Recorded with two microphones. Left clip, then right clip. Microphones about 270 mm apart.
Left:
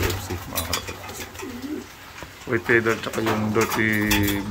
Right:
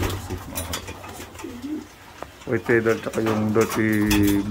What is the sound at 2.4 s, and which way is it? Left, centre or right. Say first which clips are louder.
Speech: even; centre.